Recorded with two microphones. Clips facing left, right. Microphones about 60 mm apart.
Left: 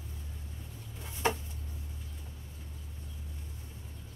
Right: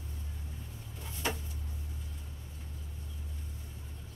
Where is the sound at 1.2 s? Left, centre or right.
Left.